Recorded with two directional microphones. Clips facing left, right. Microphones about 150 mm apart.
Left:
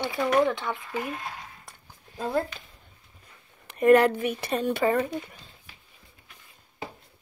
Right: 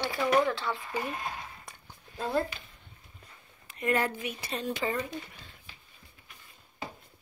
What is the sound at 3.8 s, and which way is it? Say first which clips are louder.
Speech: left 11 dB; 65° left (ahead or behind).